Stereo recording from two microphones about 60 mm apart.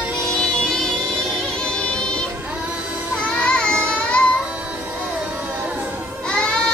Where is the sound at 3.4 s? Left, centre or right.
Centre.